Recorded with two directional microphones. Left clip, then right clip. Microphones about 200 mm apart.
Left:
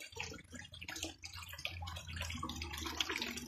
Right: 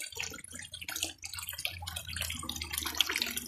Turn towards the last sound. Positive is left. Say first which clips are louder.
# right 8 dB
turn(degrees=-10)  # may be behind; listen again after turning